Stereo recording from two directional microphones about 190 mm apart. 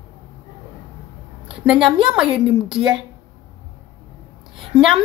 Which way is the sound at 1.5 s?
5° right (ahead or behind).